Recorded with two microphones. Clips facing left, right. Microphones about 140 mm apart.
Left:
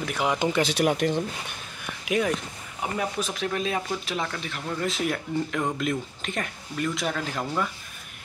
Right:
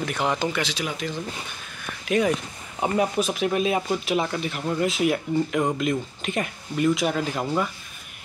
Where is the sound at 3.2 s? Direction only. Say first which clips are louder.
Right 5 dB; 15° right (ahead or behind).